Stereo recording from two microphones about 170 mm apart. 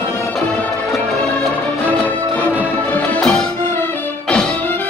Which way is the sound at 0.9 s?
Centre (ahead or behind).